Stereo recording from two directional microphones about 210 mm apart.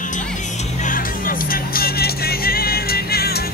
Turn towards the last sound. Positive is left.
turn(degrees=50)  # may be behind; listen again after turning